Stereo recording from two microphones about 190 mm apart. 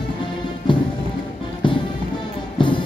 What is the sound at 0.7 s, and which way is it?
Music, 25° left (ahead or behind).